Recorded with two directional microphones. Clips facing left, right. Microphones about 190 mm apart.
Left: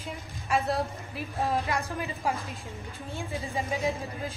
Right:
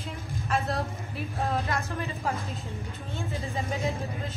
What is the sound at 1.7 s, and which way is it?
Speech, 15° left (ahead or behind).